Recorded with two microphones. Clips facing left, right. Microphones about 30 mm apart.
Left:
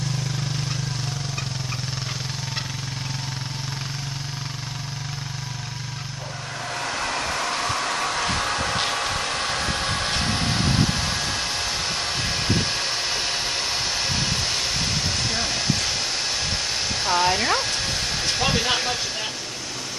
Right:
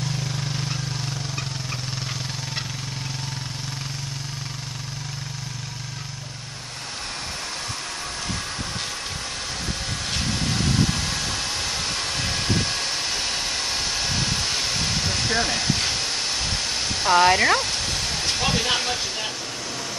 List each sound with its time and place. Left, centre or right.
7.6 s vehicle: left
9.4 s vehicle: left
10.0 s vehicle: left; by 16.0 s centre
17.0 s speech: centre
17.6 s a sound: centre